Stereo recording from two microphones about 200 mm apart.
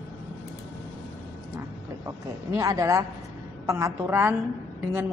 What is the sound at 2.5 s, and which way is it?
A woman's voice, 15° right (ahead or behind).